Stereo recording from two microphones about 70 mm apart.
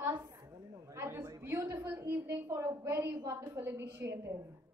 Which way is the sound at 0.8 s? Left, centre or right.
Right.